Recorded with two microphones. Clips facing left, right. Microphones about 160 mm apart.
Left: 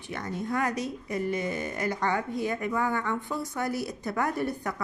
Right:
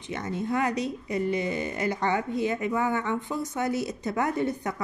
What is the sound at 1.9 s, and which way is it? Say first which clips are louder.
A woman's voice: right 2 dB; 20° right (ahead or behind).